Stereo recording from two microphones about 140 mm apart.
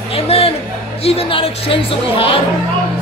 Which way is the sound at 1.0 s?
40° left (ahead or behind).